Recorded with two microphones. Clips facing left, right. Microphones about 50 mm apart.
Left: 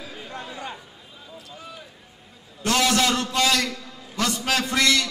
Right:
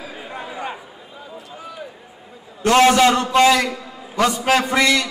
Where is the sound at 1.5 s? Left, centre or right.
Right.